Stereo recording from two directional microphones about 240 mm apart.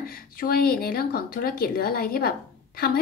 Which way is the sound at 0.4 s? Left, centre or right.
Left.